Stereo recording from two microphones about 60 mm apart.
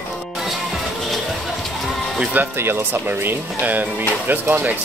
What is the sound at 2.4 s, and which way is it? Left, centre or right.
Speech, right.